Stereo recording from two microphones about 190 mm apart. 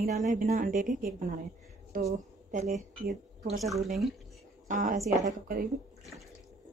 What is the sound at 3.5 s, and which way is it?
Speech, centre (ahead or behind).